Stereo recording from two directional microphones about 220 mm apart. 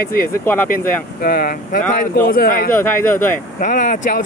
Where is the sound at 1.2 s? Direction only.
40° left (ahead or behind).